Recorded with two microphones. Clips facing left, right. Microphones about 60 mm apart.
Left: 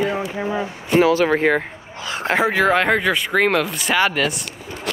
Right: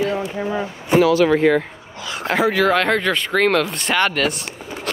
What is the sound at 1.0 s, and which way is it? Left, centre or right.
Speech, left.